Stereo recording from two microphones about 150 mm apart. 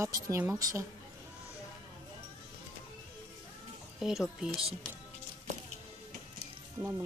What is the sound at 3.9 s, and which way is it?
Speech, centre (ahead or behind).